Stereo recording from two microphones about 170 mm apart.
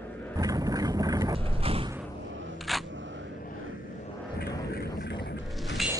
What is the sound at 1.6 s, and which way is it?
Mechanisms, 35° right (ahead or behind).